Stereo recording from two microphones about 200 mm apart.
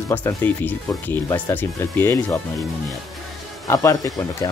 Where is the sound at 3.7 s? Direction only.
15° left (ahead or behind).